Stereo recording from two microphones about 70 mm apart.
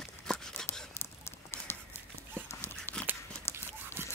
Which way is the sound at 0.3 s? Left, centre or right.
Centre.